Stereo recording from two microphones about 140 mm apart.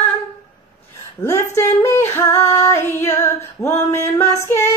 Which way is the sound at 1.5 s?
20° left (ahead or behind).